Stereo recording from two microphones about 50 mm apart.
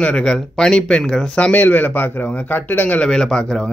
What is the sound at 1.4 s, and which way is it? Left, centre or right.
Speech, left.